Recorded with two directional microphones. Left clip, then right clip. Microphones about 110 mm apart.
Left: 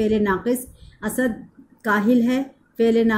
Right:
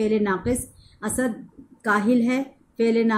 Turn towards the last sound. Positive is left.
turn(degrees=35)  # may be behind; listen again after turning